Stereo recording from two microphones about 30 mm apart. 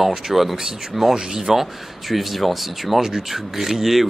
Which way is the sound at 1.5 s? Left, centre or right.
Centre.